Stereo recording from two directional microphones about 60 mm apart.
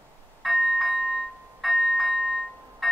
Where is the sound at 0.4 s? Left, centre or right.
Centre.